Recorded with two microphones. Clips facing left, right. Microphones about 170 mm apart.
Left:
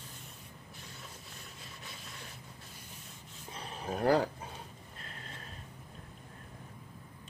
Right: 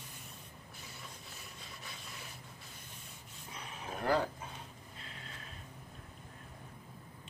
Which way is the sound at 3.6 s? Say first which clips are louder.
Left 7 dB; 35° left (ahead or behind).